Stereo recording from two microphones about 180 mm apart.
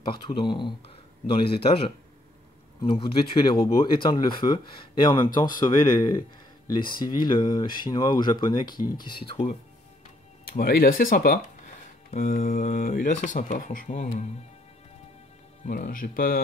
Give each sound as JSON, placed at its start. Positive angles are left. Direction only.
{"t": 0.3, "sound": "speech", "side_deg": 25}
{"t": 8.7, "sound": "speech", "side_deg": 55}
{"t": 9.0, "sound": "speech", "side_deg": 25}
{"t": 10.4, "sound": "speech", "side_deg": 55}
{"t": 15.6, "sound": "speech", "side_deg": 45}